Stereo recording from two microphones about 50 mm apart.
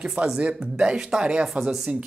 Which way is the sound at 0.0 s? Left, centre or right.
Centre.